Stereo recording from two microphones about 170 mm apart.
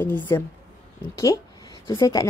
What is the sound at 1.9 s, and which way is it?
Speech, 20° left (ahead or behind).